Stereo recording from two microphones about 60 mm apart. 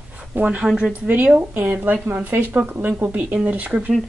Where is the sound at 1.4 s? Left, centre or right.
Right.